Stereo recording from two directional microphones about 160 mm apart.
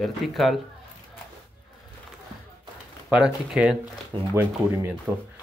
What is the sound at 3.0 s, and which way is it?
Speech, 5° right (ahead or behind).